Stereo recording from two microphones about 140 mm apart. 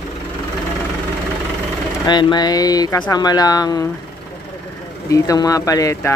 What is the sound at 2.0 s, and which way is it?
Speech, 30° left (ahead or behind).